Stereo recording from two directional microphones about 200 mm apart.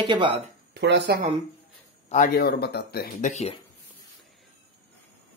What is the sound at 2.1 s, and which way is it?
Speech, 45° left (ahead or behind).